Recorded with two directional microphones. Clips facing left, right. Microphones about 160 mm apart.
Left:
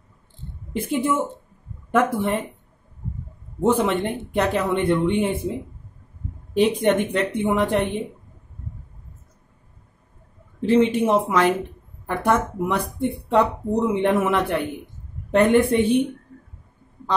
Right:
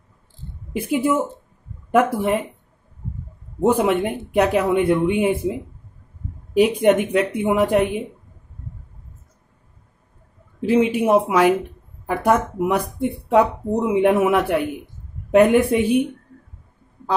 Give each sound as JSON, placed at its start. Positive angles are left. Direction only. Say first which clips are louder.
{"t": 0.7, "sound": "speech", "louder": "right 3 dB", "side_deg": -10}
{"t": 3.6, "sound": "speech", "louder": "right 2 dB", "side_deg": -10}
{"t": 10.6, "sound": "speech", "louder": "even", "side_deg": -10}